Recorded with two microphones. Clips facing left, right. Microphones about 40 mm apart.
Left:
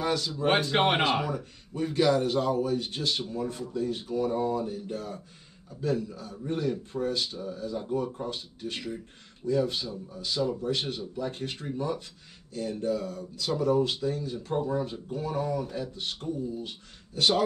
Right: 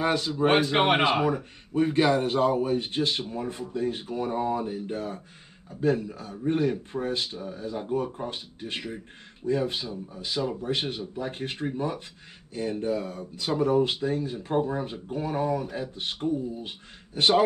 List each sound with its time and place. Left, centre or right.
0.0 s speech: right
0.3 s speech: centre
1.0 s speech: right